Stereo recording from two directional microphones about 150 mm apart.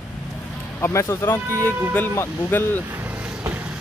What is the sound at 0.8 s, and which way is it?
Speech, 15° left (ahead or behind).